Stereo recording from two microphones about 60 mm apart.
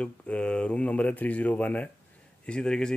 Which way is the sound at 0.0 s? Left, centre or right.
Centre.